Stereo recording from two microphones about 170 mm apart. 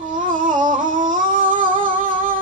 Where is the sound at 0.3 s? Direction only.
50° right (ahead or behind).